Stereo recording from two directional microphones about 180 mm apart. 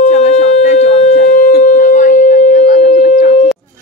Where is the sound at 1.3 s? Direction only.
50° left (ahead or behind).